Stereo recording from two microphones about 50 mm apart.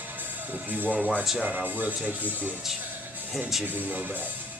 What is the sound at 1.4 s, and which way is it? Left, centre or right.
Speech, right.